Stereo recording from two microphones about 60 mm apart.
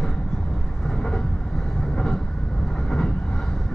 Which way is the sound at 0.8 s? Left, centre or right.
Centre.